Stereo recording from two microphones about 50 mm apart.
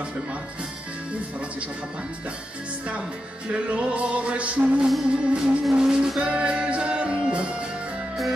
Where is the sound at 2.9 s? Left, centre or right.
Right.